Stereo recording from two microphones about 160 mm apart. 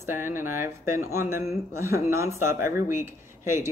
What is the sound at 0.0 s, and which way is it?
Speech, 15° right (ahead or behind).